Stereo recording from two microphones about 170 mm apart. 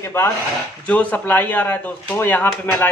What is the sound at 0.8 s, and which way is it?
Speech, 10° left (ahead or behind).